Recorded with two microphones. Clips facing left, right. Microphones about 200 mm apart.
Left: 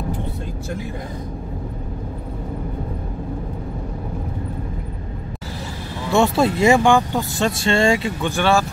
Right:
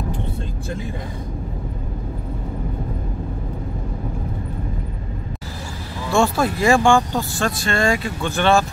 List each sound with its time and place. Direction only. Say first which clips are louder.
6.1 s speech: left 2 dB; 25° left (ahead or behind)
8.3 s speech: right 1 dB; 10° left (ahead or behind)